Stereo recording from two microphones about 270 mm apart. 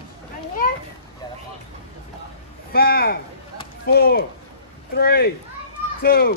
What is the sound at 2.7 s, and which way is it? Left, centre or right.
Speech, left.